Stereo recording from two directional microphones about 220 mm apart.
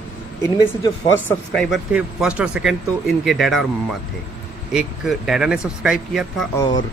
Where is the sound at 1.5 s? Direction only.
Centre (ahead or behind).